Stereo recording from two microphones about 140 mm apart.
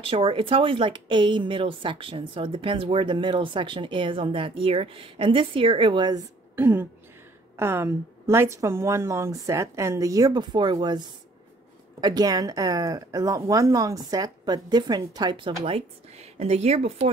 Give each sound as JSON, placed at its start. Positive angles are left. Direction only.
{"t": 0.0, "sound": "a woman's voice", "side_deg": -40}
{"t": 6.5, "sound": "a woman's voice", "side_deg": -15}
{"t": 15.6, "sound": "speech", "side_deg": -45}